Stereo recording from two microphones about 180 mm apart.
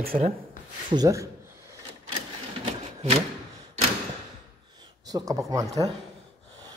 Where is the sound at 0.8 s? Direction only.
20° right (ahead or behind).